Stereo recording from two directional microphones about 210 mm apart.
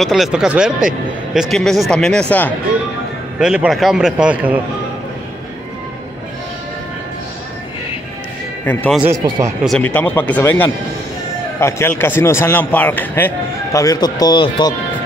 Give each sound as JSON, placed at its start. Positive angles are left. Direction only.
{"t": 0.0, "sound": "speech", "side_deg": 0}
{"t": 3.3, "sound": "speech", "side_deg": -5}
{"t": 8.6, "sound": "speech", "side_deg": 10}